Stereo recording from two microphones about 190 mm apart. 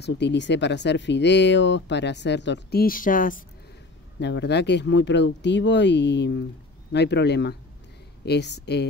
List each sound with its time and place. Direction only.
0.0 s speech: 65° left (ahead or behind); by 3.4 s 45° left (ahead or behind)
4.2 s speech: 65° left (ahead or behind)